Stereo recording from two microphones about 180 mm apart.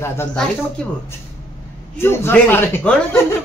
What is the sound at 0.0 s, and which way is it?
Speech, 10° left (ahead or behind).